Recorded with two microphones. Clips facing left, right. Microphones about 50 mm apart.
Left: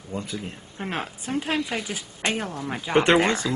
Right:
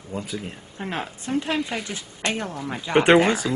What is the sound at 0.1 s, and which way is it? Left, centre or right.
Speech, centre.